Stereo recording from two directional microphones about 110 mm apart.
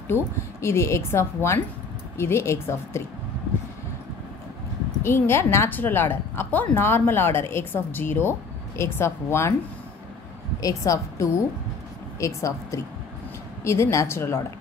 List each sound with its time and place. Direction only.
0.1 s a woman's voice: 25° left (ahead or behind)
5.0 s a woman's voice: 20° left (ahead or behind)
10.6 s a woman's voice: 30° left (ahead or behind)